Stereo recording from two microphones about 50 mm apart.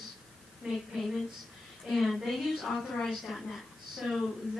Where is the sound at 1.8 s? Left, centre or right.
Centre.